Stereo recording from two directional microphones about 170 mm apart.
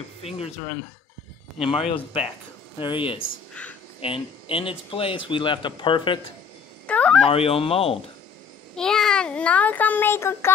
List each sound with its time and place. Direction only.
0.2 s speech: 35° left (ahead or behind)
1.9 s speech: 35° left (ahead or behind)
6.9 s a sound: 5° left (ahead or behind)
7.2 s speech: 35° left (ahead or behind)
8.7 s a child's voice: 5° left (ahead or behind)